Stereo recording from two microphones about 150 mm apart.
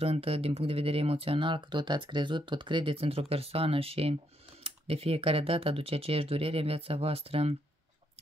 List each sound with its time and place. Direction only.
0.0 s speech: 40° right (ahead or behind)